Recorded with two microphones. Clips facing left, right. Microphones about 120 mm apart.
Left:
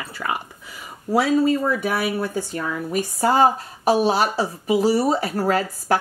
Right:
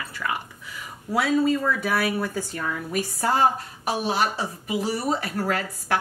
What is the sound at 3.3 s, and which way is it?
A woman's voice, 30° left (ahead or behind).